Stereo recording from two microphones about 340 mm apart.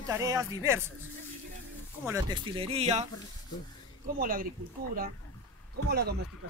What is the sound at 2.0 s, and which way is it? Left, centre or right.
Speech, centre.